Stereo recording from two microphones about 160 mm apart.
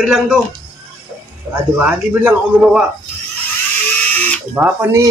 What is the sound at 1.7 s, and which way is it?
Speech, 10° right (ahead or behind).